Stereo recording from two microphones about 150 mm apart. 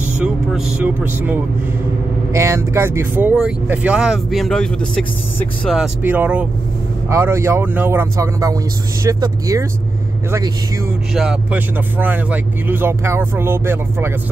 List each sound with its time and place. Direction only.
0.7 s speech: 10° right (ahead or behind); by 5.0 s 5° left (ahead or behind)
5.7 s speech: 10° right (ahead or behind)
11.1 s speech: 10° right (ahead or behind)